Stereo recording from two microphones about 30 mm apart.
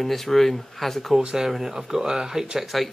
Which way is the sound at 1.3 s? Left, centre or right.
Centre.